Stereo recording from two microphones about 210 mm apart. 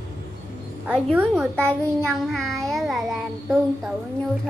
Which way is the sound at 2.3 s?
Centre (ahead or behind).